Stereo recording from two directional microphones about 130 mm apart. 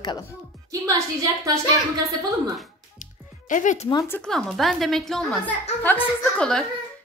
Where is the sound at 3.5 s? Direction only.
75° left (ahead or behind).